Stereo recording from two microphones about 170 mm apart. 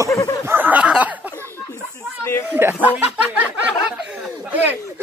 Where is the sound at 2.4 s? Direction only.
15° right (ahead or behind).